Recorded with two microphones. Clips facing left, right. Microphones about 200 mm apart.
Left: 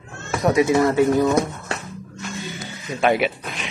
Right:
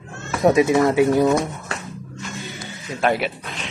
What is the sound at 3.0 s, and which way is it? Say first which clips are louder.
Speech: left 2 dB; 5° left (ahead or behind).